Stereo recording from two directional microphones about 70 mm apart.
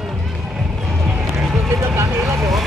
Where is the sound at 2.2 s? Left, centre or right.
Centre.